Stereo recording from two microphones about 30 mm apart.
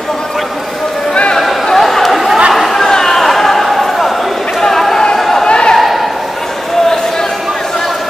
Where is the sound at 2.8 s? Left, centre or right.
Centre.